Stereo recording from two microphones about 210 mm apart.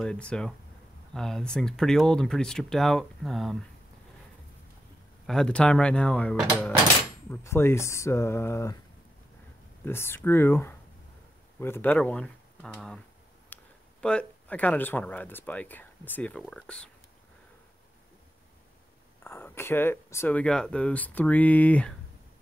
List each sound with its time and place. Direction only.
0.0 s speech: 5° left (ahead or behind)
5.2 s speech: 5° left (ahead or behind)
9.8 s speech: 10° left (ahead or behind)
13.5 s a sound: 10° left (ahead or behind)
14.0 s speech: 5° left (ahead or behind)
19.2 s speech: 10° left (ahead or behind)